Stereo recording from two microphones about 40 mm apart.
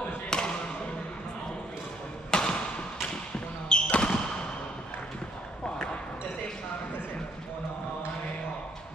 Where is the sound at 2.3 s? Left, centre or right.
Centre.